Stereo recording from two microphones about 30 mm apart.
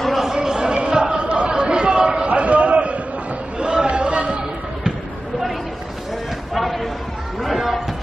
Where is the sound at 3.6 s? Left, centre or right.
Right.